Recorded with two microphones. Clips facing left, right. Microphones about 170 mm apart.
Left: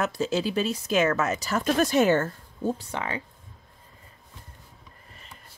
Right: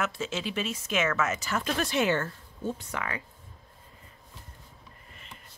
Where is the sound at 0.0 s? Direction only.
35° left (ahead or behind).